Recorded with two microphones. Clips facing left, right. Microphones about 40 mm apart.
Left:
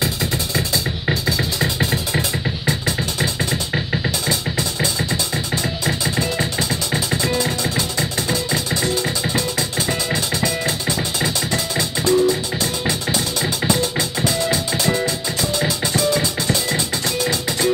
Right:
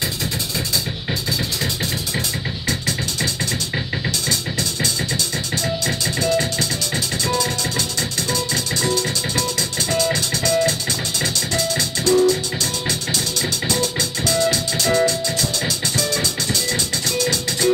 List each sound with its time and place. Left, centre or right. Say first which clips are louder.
1.6 s music: left 4 dB; left
3.7 s music: left 2 dB; centre
5.9 s music: even; centre
9.8 s music: right 1 dB; centre